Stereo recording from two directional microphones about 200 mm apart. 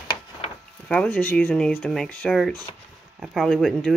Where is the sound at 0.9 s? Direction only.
5° left (ahead or behind).